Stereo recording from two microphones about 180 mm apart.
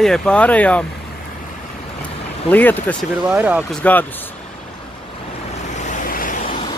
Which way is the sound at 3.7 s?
10° left (ahead or behind).